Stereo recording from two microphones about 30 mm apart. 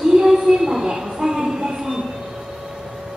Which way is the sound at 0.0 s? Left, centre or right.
Centre.